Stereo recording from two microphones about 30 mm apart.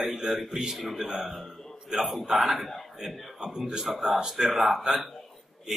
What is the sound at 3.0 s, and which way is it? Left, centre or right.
A man's voice, centre.